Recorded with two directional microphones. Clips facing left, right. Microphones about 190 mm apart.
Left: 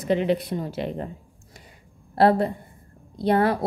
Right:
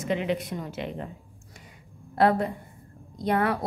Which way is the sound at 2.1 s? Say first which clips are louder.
Left 4 dB; 35° left (ahead or behind).